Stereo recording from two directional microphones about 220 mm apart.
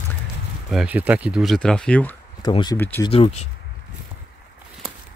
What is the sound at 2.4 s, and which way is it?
Speech, 20° left (ahead or behind).